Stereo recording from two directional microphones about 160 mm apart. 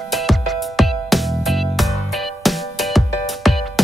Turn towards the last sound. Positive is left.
turn(degrees=0)  # may be behind; listen again after turning